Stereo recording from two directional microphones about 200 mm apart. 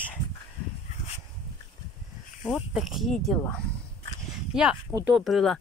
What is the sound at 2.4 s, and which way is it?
A woman's voice, centre (ahead or behind).